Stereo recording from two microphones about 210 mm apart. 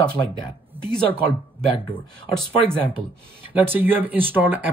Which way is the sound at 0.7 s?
10° right (ahead or behind).